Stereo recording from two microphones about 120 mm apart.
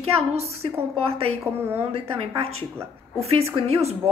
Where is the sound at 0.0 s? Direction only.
60° right (ahead or behind).